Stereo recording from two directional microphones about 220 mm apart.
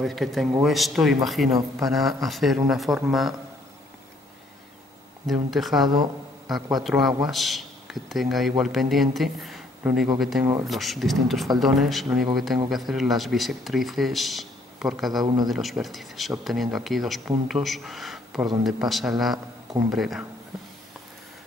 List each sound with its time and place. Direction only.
0.0 s speech: centre (ahead or behind)
5.2 s speech: centre (ahead or behind)
5.9 s speech: 15° right (ahead or behind)
6.5 s speech: centre (ahead or behind)
10.4 s speech: 15° right (ahead or behind)
10.7 s speech: centre (ahead or behind)